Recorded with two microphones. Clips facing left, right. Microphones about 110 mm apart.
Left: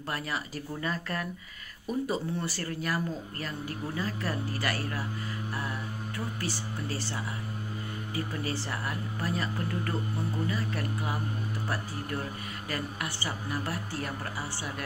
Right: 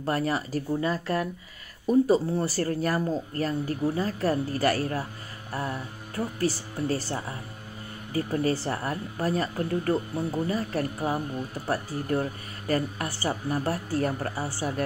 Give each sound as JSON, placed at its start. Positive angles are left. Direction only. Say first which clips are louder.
{"t": 0.0, "sound": "speech", "louder": "right 8 dB", "side_deg": -40}
{"t": 6.1, "sound": "speech", "louder": "right 9 dB", "side_deg": -40}